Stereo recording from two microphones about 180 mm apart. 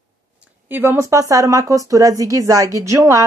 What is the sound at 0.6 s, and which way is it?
A woman's voice, 10° right (ahead or behind).